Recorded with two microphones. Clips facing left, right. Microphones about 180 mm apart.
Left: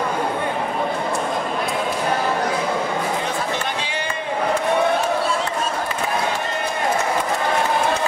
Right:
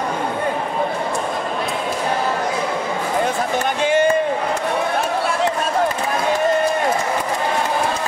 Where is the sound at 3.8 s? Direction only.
45° right (ahead or behind).